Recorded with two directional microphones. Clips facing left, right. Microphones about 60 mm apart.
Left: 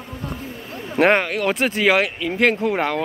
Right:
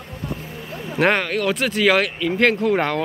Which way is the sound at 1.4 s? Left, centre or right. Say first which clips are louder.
Right 1 dB; left.